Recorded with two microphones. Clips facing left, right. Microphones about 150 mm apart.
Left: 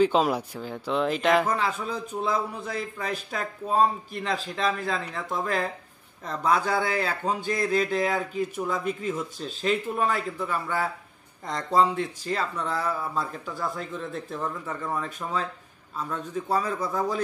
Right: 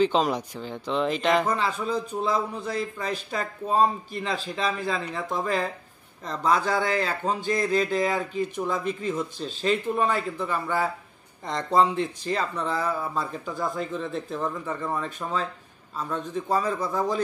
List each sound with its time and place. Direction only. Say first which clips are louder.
0.0 s speech: left 1 dB; 5° left (ahead or behind)
15.0 s speech: right 1 dB; 10° left (ahead or behind)